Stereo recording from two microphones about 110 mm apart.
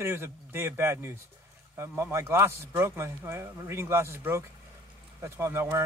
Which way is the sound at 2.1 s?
25° right (ahead or behind).